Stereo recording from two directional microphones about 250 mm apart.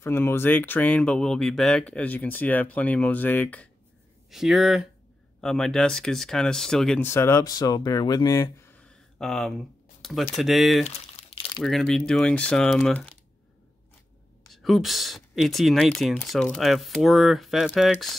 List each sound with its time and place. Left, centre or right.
0.0 s speech: centre
10.8 s crumpling: left
11.6 s speech: centre
14.5 s speech: centre